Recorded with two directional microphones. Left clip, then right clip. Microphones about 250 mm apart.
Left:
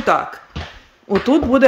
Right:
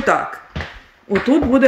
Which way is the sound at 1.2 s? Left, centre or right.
Centre.